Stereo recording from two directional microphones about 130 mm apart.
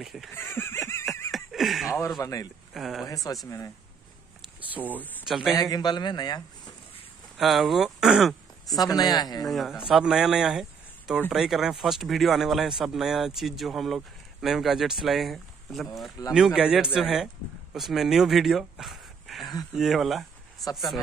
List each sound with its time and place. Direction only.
0.0 s speech: centre (ahead or behind)
0.3 s speech: 20° left (ahead or behind)
1.3 s a sound: centre (ahead or behind)
2.0 s speech: 25° left (ahead or behind)
2.7 s speech: centre (ahead or behind)
3.4 s speech: 25° left (ahead or behind)
4.6 s a sound: 10° right (ahead or behind)
5.2 s speech: centre (ahead or behind)
5.6 s a man's voice: 30° left (ahead or behind)
7.3 s speech: centre (ahead or behind)
8.7 s a man's voice: 30° left (ahead or behind)
9.5 s speech: centre (ahead or behind)